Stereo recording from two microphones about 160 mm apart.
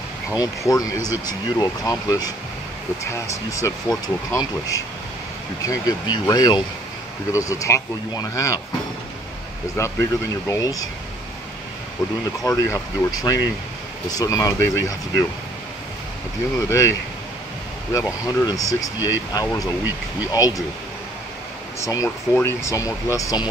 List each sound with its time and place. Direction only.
0.4 s speech: 20° left (ahead or behind)
9.8 s speech: 15° left (ahead or behind)
12.4 s speech: 20° left (ahead or behind)
16.5 s speech: 20° left (ahead or behind)
17.9 s speech: 20° left (ahead or behind)
18.9 s speech: 15° right (ahead or behind)
19.3 s speech: 20° left (ahead or behind)
21.7 s speech: 20° left (ahead or behind)